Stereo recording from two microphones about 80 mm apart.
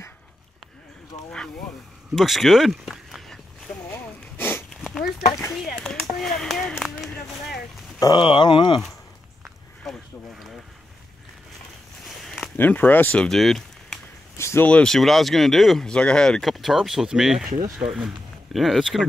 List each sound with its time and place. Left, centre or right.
2.1 s a sound: centre
3.9 s a sound: left
4.8 s a sound: centre
5.5 s speech: centre
8.1 s speech: left
12.5 s speech: left
13.2 s speech: centre
14.3 s speech: left
14.7 s speech: centre